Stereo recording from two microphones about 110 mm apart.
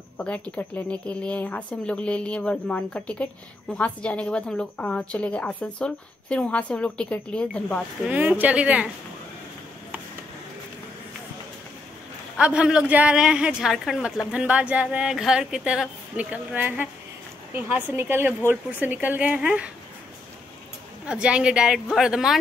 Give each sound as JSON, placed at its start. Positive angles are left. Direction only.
{"t": 0.2, "sound": "a woman's voice", "side_deg": 15}
{"t": 8.1, "sound": "a woman's voice", "side_deg": -15}
{"t": 12.4, "sound": "a woman's voice", "side_deg": -10}
{"t": 21.0, "sound": "a woman's voice", "side_deg": -10}